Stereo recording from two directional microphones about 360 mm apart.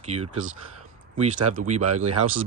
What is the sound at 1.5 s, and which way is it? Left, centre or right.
Speech, centre.